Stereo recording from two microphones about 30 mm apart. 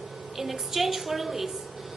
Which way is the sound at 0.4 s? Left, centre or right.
Centre.